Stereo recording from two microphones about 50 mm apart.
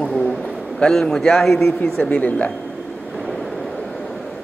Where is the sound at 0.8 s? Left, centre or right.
Centre; by 2.5 s left.